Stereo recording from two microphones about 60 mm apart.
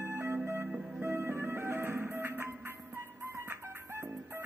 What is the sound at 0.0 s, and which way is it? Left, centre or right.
Music, right.